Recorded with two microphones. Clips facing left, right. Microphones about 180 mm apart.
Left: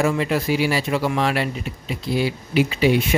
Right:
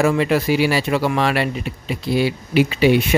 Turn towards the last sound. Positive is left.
turn(degrees=-70)  # may be behind; listen again after turning